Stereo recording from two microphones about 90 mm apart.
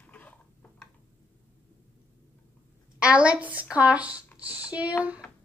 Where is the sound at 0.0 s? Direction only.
15° left (ahead or behind).